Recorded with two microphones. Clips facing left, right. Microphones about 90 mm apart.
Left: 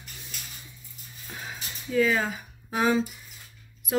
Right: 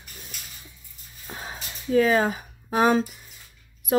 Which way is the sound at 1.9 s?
50° right (ahead or behind).